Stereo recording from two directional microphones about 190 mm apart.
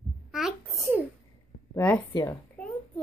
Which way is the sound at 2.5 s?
5° left (ahead or behind).